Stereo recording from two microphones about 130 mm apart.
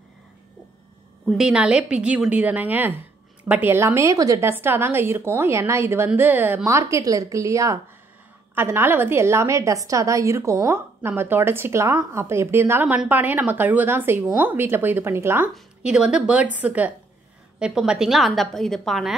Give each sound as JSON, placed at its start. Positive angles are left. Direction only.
{"t": 1.3, "sound": "a woman's voice", "side_deg": -5}
{"t": 15.5, "sound": "a woman's voice", "side_deg": -5}